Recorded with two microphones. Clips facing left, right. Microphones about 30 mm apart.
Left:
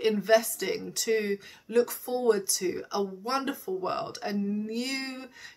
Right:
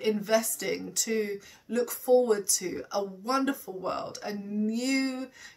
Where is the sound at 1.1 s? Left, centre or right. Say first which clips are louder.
Left 3 dB; left.